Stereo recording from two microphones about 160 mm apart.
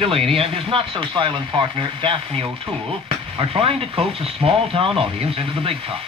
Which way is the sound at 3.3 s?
35° right (ahead or behind).